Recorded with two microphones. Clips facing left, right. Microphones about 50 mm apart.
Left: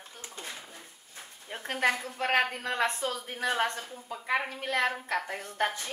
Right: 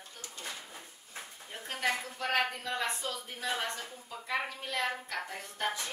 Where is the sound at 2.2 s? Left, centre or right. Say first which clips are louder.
Left 5 dB; left.